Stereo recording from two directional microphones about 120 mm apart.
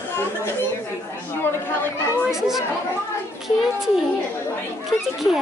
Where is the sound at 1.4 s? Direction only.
15° left (ahead or behind).